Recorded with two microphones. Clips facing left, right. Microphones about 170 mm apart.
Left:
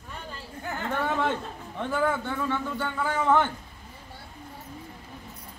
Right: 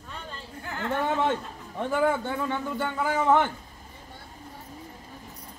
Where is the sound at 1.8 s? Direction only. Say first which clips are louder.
Right 2 dB; 15° right (ahead or behind).